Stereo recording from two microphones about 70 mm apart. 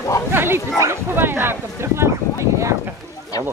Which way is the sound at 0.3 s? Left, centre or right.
Right.